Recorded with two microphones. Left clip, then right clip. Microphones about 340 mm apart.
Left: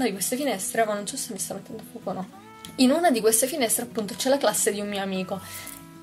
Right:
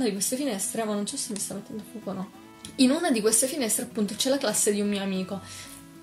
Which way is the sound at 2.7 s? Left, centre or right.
Left.